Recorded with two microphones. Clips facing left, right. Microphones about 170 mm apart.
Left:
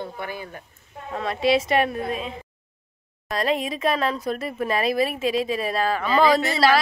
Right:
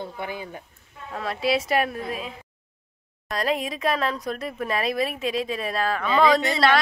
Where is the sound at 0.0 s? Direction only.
15° right (ahead or behind).